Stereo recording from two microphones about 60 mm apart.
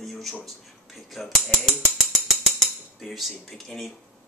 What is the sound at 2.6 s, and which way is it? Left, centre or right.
Cutlery, centre.